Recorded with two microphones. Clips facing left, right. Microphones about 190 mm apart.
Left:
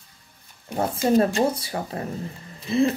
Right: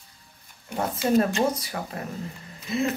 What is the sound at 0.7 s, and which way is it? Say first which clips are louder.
Speech: left 2 dB; 30° left (ahead or behind).